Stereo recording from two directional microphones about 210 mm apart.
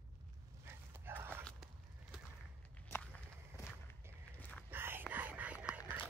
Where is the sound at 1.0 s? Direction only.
10° right (ahead or behind).